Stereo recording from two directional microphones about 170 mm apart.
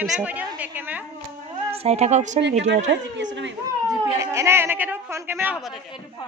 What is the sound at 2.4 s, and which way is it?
A woman's voice, 90° right.